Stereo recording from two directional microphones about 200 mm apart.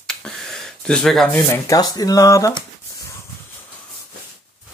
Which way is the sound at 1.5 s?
15° left (ahead or behind).